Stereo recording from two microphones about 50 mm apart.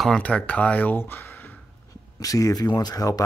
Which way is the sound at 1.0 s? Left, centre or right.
Left.